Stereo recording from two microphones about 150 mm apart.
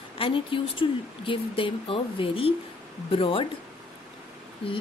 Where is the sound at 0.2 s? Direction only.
35° left (ahead or behind).